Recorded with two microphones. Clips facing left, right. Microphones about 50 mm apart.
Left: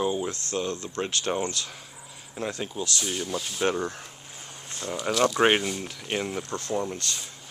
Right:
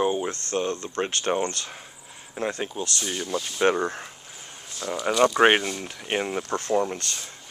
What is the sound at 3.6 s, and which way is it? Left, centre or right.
Speech, right.